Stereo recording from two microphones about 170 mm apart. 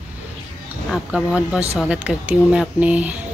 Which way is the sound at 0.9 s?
Centre (ahead or behind).